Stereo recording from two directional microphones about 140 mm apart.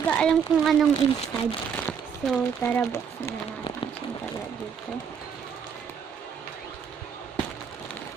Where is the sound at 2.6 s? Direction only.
15° left (ahead or behind).